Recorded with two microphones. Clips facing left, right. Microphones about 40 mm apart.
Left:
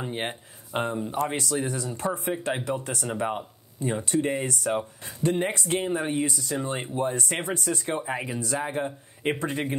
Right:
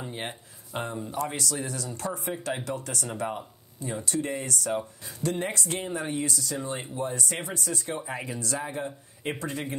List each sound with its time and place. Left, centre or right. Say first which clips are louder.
0.0 s speech: left 5 dB; left
6.5 s speech: left 4 dB; left
8.2 s speech: left 3 dB; left